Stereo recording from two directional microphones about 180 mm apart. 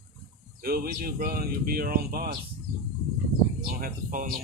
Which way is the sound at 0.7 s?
55° right (ahead or behind).